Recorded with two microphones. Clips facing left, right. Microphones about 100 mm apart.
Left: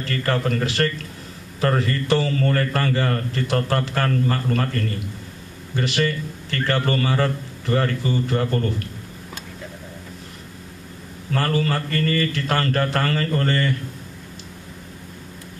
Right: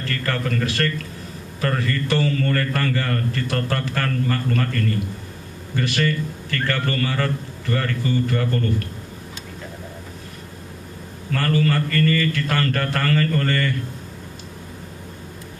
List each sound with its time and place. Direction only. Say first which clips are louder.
0.0 s a man's voice: left 2 dB; 25° left (ahead or behind)
11.3 s a man's voice: right 1 dB; 30° left (ahead or behind)